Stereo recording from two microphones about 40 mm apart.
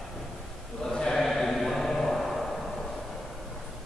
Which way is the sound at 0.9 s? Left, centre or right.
Centre.